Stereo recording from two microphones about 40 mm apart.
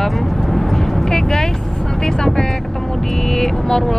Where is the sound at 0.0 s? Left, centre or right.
Centre.